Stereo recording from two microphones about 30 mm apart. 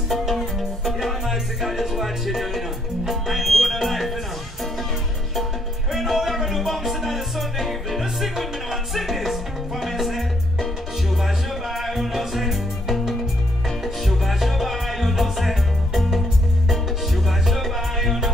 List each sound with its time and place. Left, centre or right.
0.3 s music: centre
3.1 s speech: centre
5.9 s music: centre